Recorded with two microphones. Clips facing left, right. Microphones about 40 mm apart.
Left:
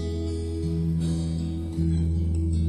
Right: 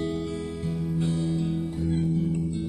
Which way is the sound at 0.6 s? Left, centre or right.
Right.